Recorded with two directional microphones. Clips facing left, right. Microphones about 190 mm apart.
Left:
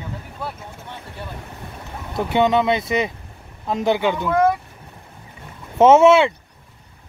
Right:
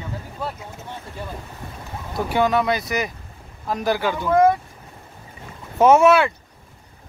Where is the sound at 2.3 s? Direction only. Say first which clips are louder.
Left 2 dB; 25° left (ahead or behind).